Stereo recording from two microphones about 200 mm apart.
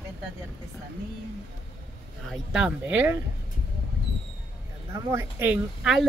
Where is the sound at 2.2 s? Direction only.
5° right (ahead or behind).